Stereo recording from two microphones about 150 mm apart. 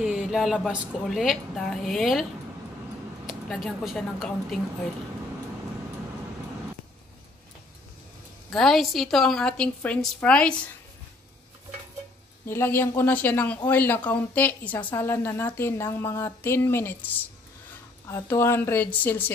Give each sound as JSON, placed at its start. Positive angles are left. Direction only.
{"t": 0.0, "sound": "a woman's voice", "side_deg": -5}
{"t": 3.3, "sound": "a woman's voice", "side_deg": 0}
{"t": 8.5, "sound": "a woman's voice", "side_deg": 5}
{"t": 12.4, "sound": "a woman's voice", "side_deg": 15}